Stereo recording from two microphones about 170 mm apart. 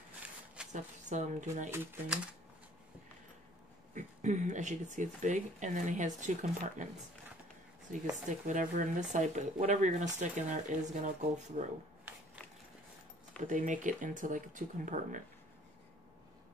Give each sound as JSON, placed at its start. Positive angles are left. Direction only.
{"t": 0.7, "sound": "speech", "side_deg": -45}
{"t": 1.7, "sound": "speech", "side_deg": -15}
{"t": 3.9, "sound": "speech", "side_deg": -45}
{"t": 7.9, "sound": "speech", "side_deg": -50}
{"t": 13.4, "sound": "speech", "side_deg": -50}